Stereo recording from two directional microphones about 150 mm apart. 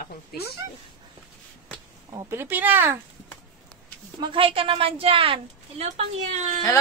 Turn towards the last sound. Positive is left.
turn(degrees=-45)  # may be behind; listen again after turning